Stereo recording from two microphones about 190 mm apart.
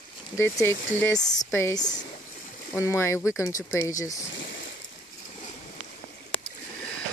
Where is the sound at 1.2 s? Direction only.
40° left (ahead or behind).